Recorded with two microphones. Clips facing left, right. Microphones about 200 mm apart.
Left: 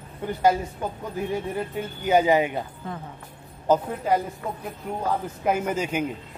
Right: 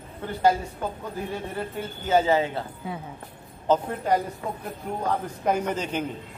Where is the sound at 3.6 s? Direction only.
5° left (ahead or behind).